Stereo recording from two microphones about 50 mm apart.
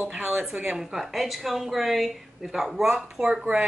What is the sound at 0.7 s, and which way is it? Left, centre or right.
Speech, centre.